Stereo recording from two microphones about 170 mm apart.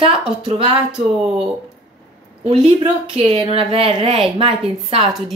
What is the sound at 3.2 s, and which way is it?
A woman's voice, 35° right (ahead or behind).